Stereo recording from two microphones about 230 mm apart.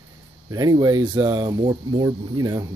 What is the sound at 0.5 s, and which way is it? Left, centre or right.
Speech, centre.